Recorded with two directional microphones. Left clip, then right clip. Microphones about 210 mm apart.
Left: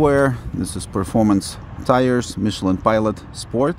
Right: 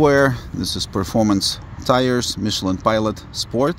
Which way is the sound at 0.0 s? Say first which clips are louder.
Right 1 dB; centre (ahead or behind).